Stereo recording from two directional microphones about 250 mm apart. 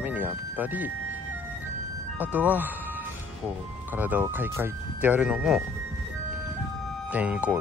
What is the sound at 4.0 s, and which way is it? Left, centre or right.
Speech, centre.